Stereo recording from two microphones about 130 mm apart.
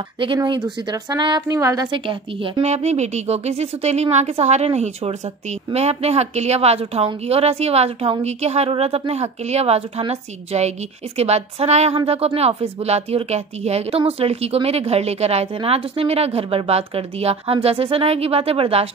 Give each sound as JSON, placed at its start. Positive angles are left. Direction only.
{"t": 0.2, "sound": "a woman's voice", "side_deg": -40}
{"t": 1.9, "sound": "a woman's voice", "side_deg": -40}
{"t": 2.6, "sound": "a woman's voice", "side_deg": -60}